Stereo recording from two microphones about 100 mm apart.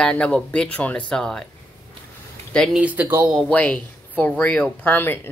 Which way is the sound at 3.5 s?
15° left (ahead or behind).